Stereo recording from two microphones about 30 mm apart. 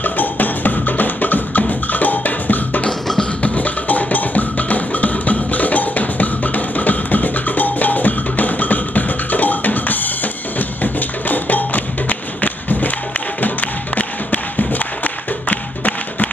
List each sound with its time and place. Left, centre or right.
0.0 s music: left
1.7 s drum: left
3.4 s music: left